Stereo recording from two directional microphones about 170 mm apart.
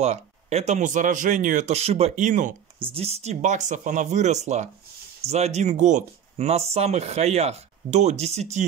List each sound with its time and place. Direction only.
0.0 s speech: 40° right (ahead or behind)
2.8 s speech: 35° right (ahead or behind)